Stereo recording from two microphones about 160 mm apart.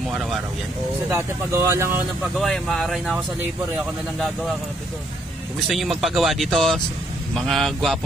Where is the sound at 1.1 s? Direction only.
15° right (ahead or behind).